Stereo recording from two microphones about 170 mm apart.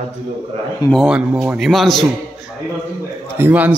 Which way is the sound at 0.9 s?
5° right (ahead or behind).